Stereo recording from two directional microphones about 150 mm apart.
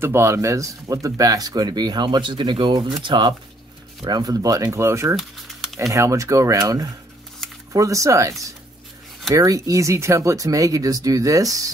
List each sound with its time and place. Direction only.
0.0 s speech: 20° right (ahead or behind)
5.1 s typing: centre (ahead or behind)
5.9 s speech: 20° right (ahead or behind)